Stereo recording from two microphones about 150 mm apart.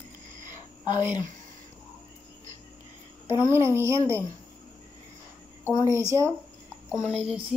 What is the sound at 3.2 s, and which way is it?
Speech, 20° right (ahead or behind).